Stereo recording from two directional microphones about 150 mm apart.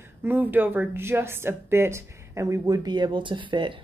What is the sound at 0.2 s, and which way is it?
A woman's voice, 10° right (ahead or behind).